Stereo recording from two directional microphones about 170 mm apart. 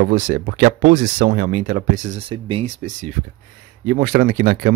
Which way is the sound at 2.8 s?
45° right (ahead or behind).